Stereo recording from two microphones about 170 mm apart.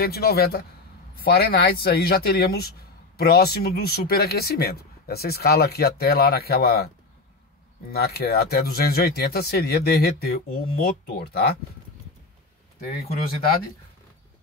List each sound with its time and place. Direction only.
0.0 s a man's voice: 65° left (ahead or behind)
7.9 s speech: 65° left (ahead or behind)